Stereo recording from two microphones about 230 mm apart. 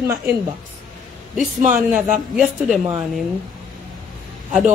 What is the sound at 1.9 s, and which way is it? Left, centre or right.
Speech, centre.